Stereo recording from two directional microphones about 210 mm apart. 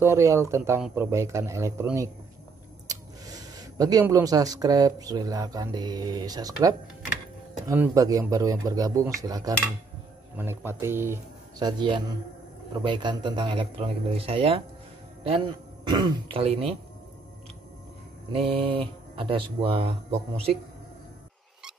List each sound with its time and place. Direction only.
0.0 s speech: 15° right (ahead or behind)
11.6 s speech: 20° right (ahead or behind)
18.5 s speech: 25° right (ahead or behind)